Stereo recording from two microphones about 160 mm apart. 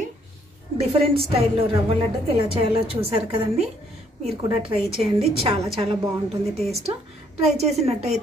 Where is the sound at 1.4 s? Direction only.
35° right (ahead or behind).